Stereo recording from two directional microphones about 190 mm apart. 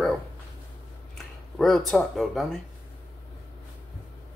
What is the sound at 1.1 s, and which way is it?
Speech, centre (ahead or behind).